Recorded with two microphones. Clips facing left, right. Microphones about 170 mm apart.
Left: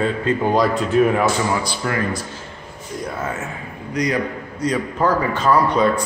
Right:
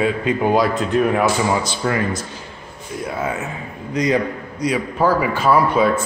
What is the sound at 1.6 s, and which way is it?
Speech, 20° right (ahead or behind).